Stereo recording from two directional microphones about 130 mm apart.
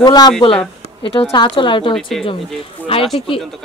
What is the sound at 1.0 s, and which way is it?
Speech, 45° left (ahead or behind).